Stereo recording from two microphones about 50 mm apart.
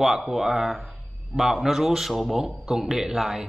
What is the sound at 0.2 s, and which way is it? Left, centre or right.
A man's voice, centre.